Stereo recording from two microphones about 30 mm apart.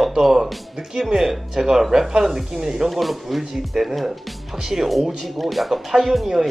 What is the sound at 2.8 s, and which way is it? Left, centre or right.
Speech, centre.